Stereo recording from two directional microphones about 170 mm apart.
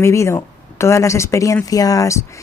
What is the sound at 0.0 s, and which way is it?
Speech, 15° left (ahead or behind).